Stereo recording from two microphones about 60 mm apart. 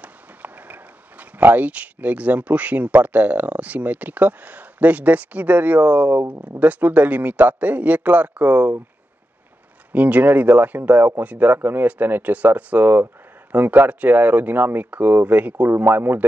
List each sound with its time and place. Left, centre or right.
0.0 s speech: right
9.9 s speech: right